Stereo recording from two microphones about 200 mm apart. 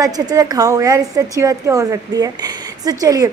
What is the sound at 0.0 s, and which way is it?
A woman's voice, 20° right (ahead or behind).